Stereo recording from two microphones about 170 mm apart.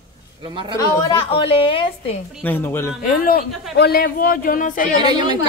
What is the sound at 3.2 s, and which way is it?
Speech, 60° left (ahead or behind).